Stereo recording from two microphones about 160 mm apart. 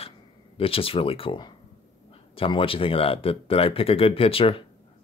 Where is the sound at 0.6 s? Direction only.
35° left (ahead or behind).